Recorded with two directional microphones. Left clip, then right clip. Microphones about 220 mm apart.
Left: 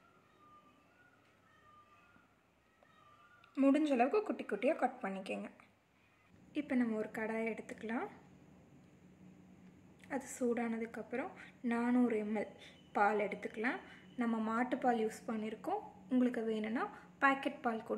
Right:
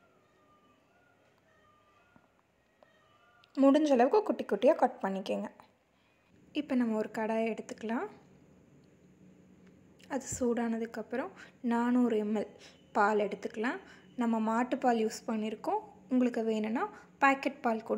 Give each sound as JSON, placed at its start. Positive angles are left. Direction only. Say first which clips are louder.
{"t": 3.5, "sound": "a woman's voice", "louder": "right 7 dB", "side_deg": -30}
{"t": 9.9, "sound": "a woman's voice", "louder": "right 5 dB", "side_deg": -25}